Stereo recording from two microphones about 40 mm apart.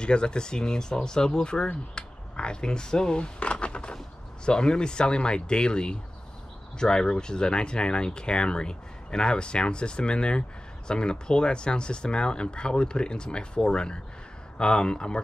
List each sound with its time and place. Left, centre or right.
0.0 s speech: left
2.0 s finger snapping: left
3.2 s a sound: left
4.5 s speech: left